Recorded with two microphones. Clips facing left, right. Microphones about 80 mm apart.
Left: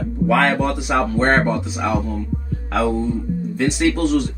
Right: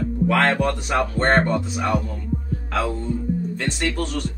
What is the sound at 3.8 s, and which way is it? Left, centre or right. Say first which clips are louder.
Speech: left 10 dB; centre.